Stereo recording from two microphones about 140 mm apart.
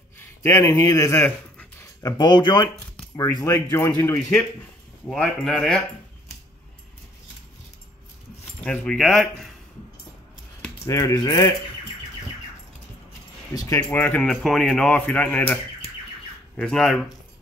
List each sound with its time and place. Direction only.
0.4 s speech: 20° left (ahead or behind)
2.0 s speech: 30° left (ahead or behind)
5.1 s speech: 5° left (ahead or behind)
8.6 s speech: 5° left (ahead or behind)
10.9 s speech: 25° left (ahead or behind)
13.5 s speech: 25° left (ahead or behind)
13.7 s speech: 15° left (ahead or behind)
14.2 s speech: centre (ahead or behind)